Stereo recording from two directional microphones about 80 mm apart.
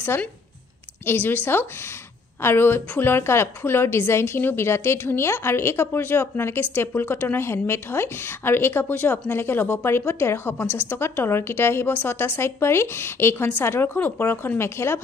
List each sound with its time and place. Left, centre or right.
1.0 s a woman's voice: left